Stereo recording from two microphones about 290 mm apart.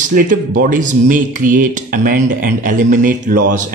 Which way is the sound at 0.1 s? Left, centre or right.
Right.